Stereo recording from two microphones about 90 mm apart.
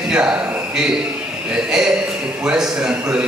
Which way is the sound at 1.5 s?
5° right (ahead or behind).